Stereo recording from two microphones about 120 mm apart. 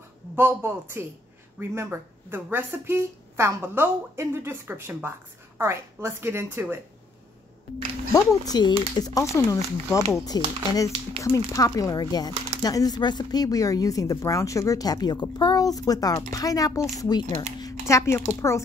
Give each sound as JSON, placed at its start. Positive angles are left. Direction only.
{"t": 0.4, "sound": "speech", "side_deg": -20}
{"t": 8.1, "sound": "speech", "side_deg": 30}
{"t": 11.1, "sound": "speech", "side_deg": 25}